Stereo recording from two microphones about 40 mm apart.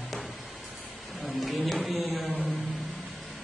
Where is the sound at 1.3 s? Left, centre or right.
Centre.